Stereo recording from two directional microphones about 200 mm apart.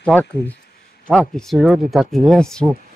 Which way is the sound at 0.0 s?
5° left (ahead or behind).